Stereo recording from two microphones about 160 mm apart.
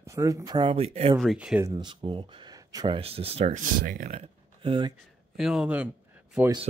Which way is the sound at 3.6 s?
60° right (ahead or behind).